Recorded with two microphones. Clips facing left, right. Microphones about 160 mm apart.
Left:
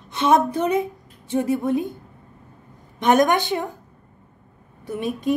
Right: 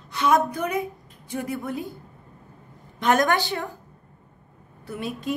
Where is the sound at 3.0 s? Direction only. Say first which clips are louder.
Left 4 dB; 20° left (ahead or behind).